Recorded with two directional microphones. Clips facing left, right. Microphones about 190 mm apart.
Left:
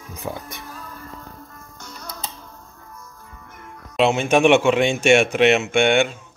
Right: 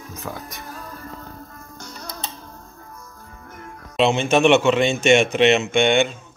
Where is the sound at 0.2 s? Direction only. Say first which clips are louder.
Left 3 dB; 20° left (ahead or behind).